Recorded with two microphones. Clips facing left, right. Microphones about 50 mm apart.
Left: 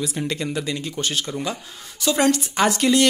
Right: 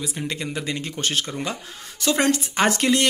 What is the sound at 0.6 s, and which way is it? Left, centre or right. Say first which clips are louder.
Speech: left 1 dB; right.